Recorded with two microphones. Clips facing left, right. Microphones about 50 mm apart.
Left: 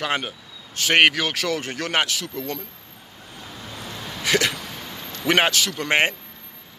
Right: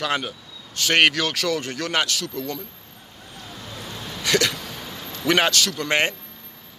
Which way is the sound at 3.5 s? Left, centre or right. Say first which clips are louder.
Even; centre.